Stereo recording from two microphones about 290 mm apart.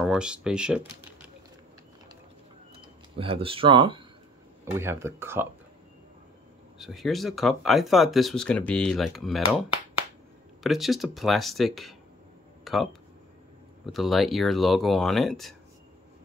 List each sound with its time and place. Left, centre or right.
0.0 s speech: centre
3.2 s speech: centre
6.8 s speech: centre